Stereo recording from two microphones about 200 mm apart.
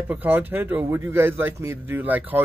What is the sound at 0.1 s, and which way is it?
A man's voice, 10° right (ahead or behind).